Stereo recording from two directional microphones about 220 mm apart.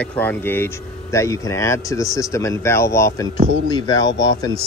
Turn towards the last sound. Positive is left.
turn(degrees=15)  # may be behind; listen again after turning